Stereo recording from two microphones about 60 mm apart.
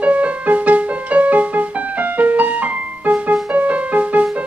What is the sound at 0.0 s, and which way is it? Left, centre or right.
Music, right.